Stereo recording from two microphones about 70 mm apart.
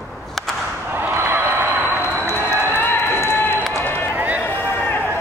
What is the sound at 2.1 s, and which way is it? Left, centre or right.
Run, left.